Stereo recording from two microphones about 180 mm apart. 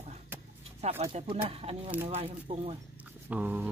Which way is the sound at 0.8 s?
35° right (ahead or behind).